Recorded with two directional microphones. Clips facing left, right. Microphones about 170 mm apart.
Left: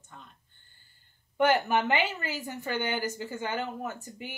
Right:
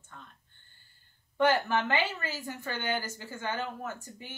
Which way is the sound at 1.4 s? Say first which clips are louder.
Left 2 dB; 20° left (ahead or behind).